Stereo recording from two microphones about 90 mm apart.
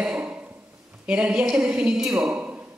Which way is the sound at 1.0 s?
10° right (ahead or behind).